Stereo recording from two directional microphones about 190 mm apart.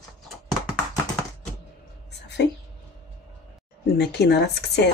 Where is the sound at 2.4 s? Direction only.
65° left (ahead or behind).